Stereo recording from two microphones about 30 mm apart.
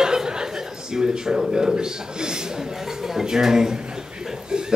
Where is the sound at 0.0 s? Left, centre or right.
Right.